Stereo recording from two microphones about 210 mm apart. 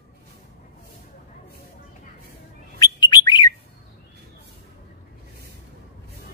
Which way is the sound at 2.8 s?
20° left (ahead or behind).